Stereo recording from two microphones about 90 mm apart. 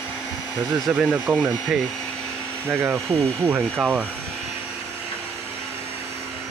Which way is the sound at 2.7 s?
25° right (ahead or behind).